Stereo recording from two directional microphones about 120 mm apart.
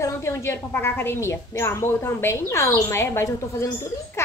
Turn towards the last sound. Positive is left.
turn(degrees=25)  # may be behind; listen again after turning